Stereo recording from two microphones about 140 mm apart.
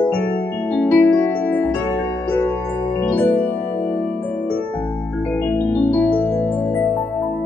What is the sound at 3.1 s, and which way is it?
Music, 10° left (ahead or behind).